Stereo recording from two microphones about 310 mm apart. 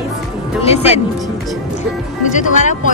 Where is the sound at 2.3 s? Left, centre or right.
Left.